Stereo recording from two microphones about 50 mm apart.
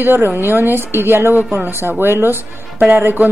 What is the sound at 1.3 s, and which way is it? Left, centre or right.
A woman's voice, right.